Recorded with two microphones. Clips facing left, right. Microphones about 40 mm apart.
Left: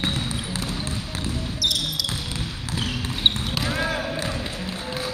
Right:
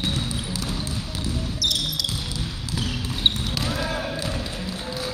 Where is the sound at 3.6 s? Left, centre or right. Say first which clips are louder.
Left 3 dB; left.